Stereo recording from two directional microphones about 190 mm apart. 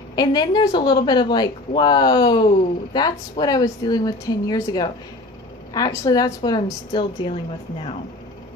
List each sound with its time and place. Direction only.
0.1 s a woman's voice: 20° left (ahead or behind)